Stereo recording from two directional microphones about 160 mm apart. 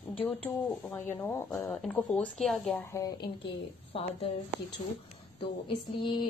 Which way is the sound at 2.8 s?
20° left (ahead or behind).